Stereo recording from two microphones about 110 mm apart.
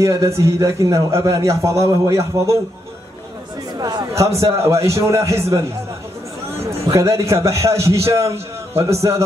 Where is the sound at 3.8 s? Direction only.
40° right (ahead or behind).